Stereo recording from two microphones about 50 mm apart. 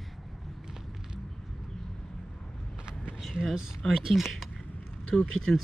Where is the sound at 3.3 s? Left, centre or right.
Centre.